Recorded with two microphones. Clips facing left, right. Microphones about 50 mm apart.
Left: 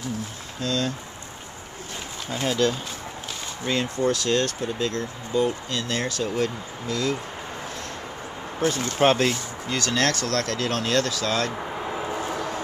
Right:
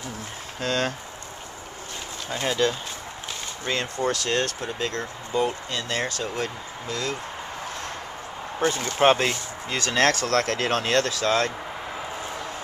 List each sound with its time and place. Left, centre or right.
0.6 s speech: right
2.2 s speech: centre
4.3 s speech: right
5.8 s speech: centre
8.5 s speech: centre; by 10.8 s right
10.8 s speech: centre
11.8 s a sound: centre